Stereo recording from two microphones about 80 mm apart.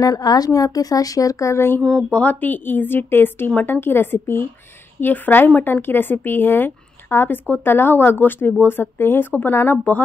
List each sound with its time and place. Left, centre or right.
0.0 s a woman's voice: left
1.8 s speech: centre; by 10.0 s left